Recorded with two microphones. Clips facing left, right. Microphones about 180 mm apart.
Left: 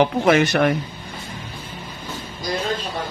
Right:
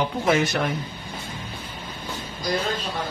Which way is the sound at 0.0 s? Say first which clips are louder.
Left 5 dB; 70° left (ahead or behind).